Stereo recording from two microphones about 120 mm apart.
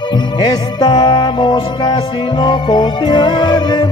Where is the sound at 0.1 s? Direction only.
35° left (ahead or behind).